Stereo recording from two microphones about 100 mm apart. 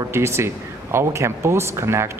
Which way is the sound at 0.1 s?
25° right (ahead or behind).